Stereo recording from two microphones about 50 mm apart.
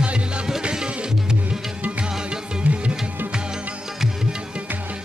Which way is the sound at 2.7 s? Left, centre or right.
Right.